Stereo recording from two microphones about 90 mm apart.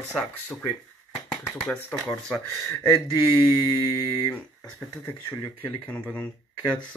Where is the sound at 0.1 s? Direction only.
10° left (ahead or behind).